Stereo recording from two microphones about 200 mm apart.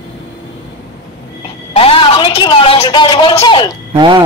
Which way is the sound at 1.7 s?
25° left (ahead or behind).